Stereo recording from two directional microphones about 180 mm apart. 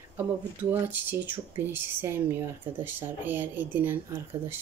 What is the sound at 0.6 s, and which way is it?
Speech, 10° right (ahead or behind).